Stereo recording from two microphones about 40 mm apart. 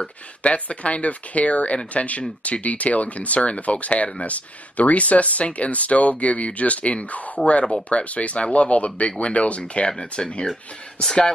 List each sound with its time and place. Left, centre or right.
0.4 s speech: left
10.5 s speech: centre